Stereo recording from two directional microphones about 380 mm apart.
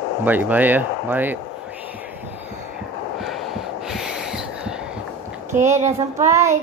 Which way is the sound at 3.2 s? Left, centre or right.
Centre.